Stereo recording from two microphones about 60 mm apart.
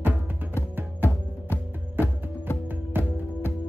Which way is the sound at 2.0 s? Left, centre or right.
Right.